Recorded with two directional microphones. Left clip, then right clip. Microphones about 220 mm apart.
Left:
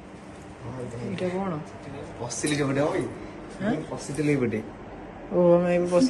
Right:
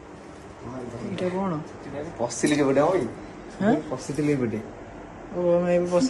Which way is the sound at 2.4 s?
35° right (ahead or behind).